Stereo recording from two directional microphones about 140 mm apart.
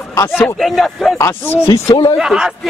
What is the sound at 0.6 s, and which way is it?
Speech, centre (ahead or behind).